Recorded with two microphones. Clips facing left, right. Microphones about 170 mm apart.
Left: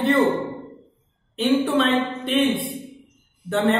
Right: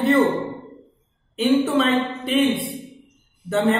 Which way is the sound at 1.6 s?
Centre (ahead or behind).